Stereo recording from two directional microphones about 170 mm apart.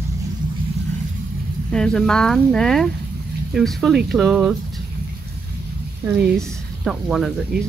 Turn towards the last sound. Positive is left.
turn(degrees=0)  # may be behind; listen again after turning